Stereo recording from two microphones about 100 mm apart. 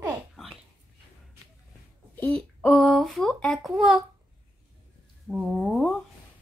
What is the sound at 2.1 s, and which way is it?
Speech, 15° left (ahead or behind).